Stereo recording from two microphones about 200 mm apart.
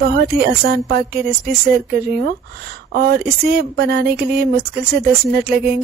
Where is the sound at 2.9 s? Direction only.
50° right (ahead or behind).